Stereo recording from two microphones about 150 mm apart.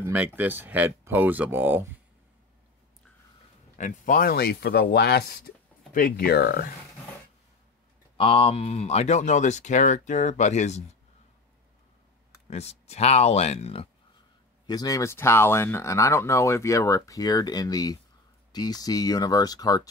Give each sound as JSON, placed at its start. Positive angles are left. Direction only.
{"t": 0.0, "sound": "speech", "side_deg": -10}
{"t": 3.7, "sound": "speech", "side_deg": 60}
{"t": 8.2, "sound": "speech", "side_deg": 40}
{"t": 12.4, "sound": "speech", "side_deg": 45}
{"t": 14.7, "sound": "speech", "side_deg": 25}